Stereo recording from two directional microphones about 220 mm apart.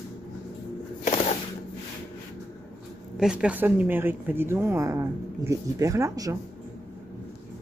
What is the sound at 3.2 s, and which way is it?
Speech, 5° right (ahead or behind).